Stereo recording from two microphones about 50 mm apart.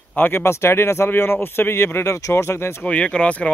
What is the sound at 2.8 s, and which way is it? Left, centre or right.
Speech, left.